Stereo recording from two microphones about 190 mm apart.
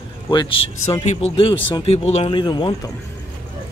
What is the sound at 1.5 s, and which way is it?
Speech, 25° left (ahead or behind).